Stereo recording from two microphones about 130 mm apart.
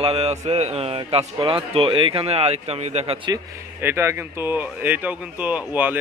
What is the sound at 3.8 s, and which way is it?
Speech, 20° right (ahead or behind).